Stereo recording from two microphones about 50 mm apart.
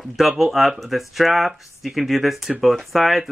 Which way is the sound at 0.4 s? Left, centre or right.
Centre.